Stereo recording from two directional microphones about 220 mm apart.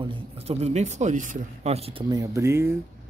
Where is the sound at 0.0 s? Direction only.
25° right (ahead or behind).